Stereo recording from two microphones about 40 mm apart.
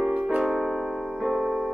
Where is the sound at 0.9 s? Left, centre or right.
Right.